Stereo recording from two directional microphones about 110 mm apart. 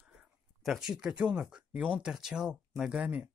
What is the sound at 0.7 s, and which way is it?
Speech, 5° right (ahead or behind).